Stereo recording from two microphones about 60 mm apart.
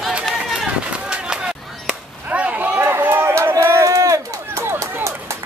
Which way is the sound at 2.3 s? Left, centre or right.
Right.